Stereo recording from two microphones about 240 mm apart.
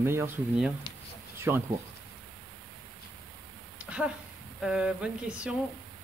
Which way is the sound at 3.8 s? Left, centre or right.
Centre.